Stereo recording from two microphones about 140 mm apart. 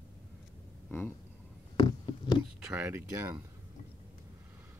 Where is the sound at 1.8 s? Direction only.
35° left (ahead or behind).